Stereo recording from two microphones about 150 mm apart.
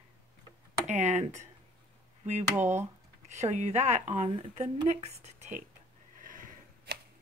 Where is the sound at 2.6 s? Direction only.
15° right (ahead or behind).